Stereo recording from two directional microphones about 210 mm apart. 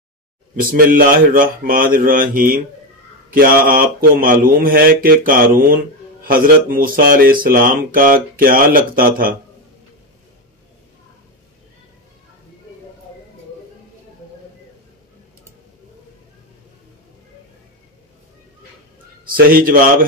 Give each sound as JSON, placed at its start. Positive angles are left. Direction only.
{"t": 0.6, "sound": "speech", "side_deg": -45}
{"t": 19.2, "sound": "speech", "side_deg": -45}